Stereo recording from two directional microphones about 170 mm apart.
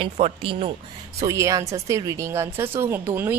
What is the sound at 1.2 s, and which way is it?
A woman's voice, 15° right (ahead or behind).